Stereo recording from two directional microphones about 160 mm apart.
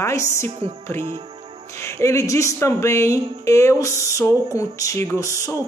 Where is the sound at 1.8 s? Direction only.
15° left (ahead or behind).